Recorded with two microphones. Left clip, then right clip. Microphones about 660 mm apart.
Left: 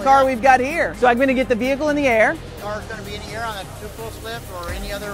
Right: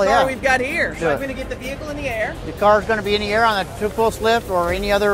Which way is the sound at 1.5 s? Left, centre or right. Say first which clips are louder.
Left 9 dB; left.